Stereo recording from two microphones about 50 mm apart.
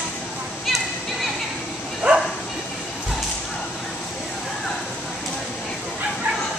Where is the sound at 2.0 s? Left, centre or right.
Right.